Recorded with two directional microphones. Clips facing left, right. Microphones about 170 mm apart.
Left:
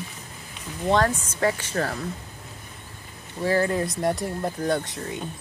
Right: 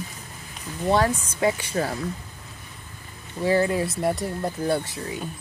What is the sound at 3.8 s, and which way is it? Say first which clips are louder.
Speech: even; 5° right (ahead or behind).